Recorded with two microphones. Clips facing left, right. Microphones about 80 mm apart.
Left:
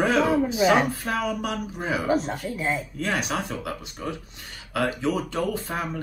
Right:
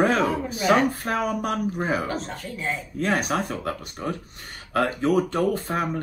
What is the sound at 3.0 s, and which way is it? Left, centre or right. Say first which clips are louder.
Speech: right 3 dB; right.